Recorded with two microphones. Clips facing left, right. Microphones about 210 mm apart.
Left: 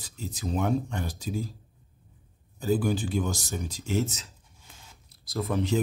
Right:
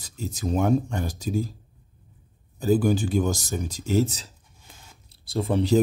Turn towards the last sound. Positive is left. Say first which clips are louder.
# right 5 dB
turn(degrees=-30)  # may be behind; listen again after turning